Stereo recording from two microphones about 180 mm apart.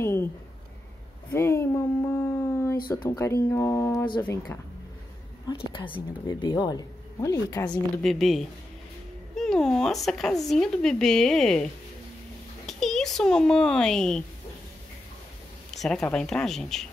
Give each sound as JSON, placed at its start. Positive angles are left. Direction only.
{"t": 0.0, "sound": "speech", "side_deg": 15}
{"t": 1.3, "sound": "a sound", "side_deg": 15}
{"t": 2.9, "sound": "speech", "side_deg": 10}
{"t": 5.5, "sound": "a woman's voice", "side_deg": 30}
{"t": 8.0, "sound": "a woman's voice", "side_deg": 0}
{"t": 15.7, "sound": "a sound", "side_deg": 0}
{"t": 16.0, "sound": "a woman's voice", "side_deg": 5}